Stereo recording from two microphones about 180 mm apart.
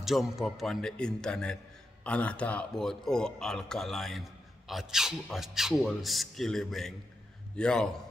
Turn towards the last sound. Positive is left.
turn(degrees=5)  # may be behind; listen again after turning